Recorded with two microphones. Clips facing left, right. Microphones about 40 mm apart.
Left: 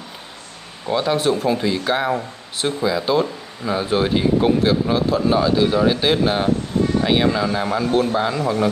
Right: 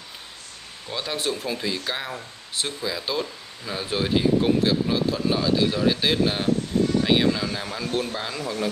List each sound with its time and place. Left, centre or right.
0.8 s a man's voice: centre